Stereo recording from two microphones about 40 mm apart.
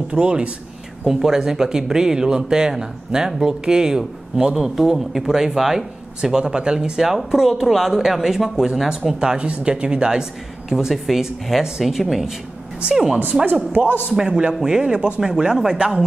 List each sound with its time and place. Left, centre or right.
0.1 s speech: right
1.0 s speech: centre
9.2 s speech: right; by 12.4 s centre
12.8 s speech: centre